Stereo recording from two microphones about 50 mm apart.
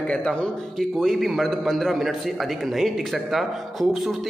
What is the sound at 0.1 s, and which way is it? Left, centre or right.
Speech, centre.